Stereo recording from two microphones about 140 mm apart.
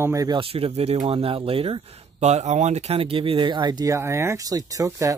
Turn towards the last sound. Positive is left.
turn(degrees=-25)  # may be behind; listen again after turning